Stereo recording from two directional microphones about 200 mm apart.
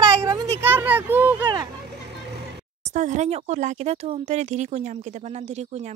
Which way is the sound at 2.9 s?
35° right (ahead or behind).